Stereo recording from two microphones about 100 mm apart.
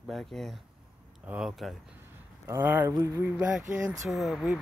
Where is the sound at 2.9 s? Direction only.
35° right (ahead or behind).